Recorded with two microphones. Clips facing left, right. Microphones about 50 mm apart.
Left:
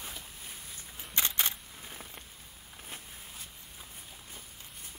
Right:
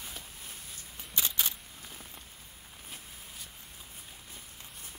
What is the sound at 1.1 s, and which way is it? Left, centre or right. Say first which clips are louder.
Single-lens reflex camera: left 2 dB; left.